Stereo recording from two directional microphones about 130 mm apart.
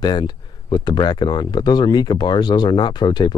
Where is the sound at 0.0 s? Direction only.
35° left (ahead or behind).